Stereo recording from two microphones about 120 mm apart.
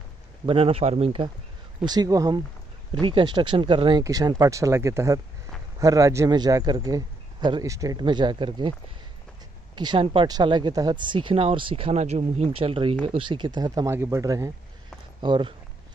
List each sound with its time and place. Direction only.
0.5 s speech: 50° right (ahead or behind)
1.9 s a man's voice: 30° right (ahead or behind)
2.9 s speech: 45° right (ahead or behind)
4.0 s a man's voice: 30° right (ahead or behind)
7.6 s speech: 25° right (ahead or behind)
8.0 s a man's voice: 40° right (ahead or behind)
9.8 s a man's voice: 40° right (ahead or behind)
15.2 s speech: 45° right (ahead or behind)